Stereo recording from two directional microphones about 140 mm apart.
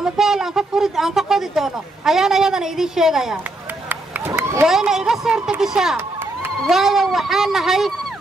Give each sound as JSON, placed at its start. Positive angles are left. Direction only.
{"t": 0.0, "sound": "speech", "side_deg": -5}
{"t": 3.9, "sound": "run", "side_deg": -15}
{"t": 4.6, "sound": "speech", "side_deg": 0}